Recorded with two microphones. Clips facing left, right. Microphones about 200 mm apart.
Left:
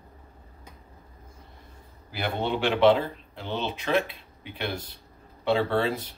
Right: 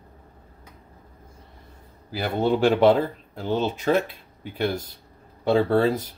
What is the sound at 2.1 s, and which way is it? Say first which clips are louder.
Speech: right 6 dB; 40° right (ahead or behind).